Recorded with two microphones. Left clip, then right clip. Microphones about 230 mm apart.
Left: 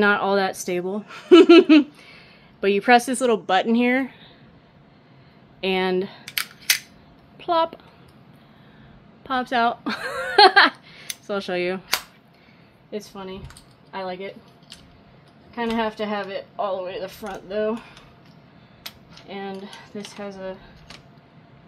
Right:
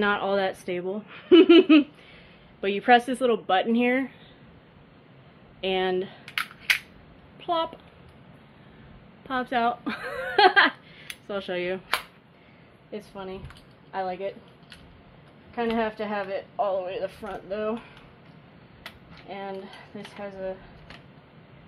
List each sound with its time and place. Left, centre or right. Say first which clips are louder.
0.0 s speech: left 5 dB; left
5.6 s speech: left 3 dB; left
6.2 s cap gun: left 2 dB; centre
7.3 s speech: left 6 dB; left
9.3 s speech: left 4 dB; left
12.9 s a woman's voice: left 3 dB; left
15.5 s a woman's voice: left 2 dB; left
18.8 s a sound: left 4 dB; left
19.2 s a woman's voice: left 2 dB; left